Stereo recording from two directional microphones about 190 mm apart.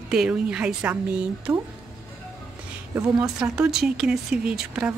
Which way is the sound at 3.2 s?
5° right (ahead or behind).